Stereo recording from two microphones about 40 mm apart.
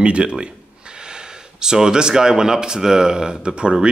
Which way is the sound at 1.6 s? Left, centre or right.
Centre.